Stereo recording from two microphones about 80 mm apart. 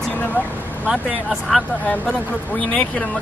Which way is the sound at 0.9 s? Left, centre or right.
Centre.